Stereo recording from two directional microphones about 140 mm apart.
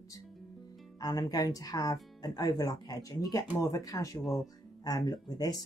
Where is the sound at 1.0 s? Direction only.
30° left (ahead or behind).